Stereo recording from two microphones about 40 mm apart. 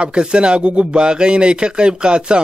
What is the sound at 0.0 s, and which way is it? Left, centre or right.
Speech, right.